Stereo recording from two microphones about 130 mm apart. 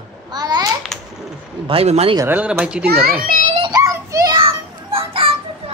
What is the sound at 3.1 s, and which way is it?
Speech, 90° right.